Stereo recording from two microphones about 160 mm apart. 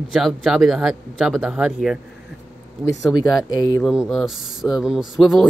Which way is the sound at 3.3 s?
25° left (ahead or behind).